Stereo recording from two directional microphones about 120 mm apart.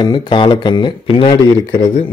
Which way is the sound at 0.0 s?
40° left (ahead or behind).